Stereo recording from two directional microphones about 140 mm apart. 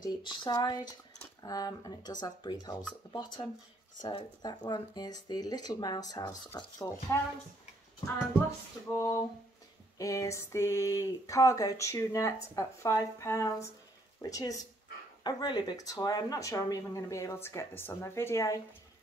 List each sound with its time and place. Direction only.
0.0 s speech: 30° left (ahead or behind)
4.4 s speech: 30° left (ahead or behind)
8.9 s speech: 20° left (ahead or behind)